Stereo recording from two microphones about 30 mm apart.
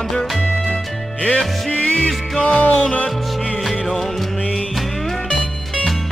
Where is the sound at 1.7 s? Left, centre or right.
Left.